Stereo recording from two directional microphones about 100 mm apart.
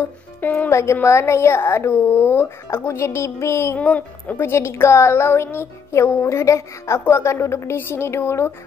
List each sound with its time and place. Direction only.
0.4 s music: 20° left (ahead or behind)
3.7 s music: 15° left (ahead or behind)